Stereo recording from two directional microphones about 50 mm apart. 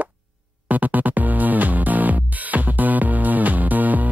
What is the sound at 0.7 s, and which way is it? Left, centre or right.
Music, right.